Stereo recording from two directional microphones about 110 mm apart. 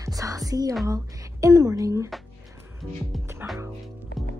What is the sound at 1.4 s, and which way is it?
Speech, 30° right (ahead or behind).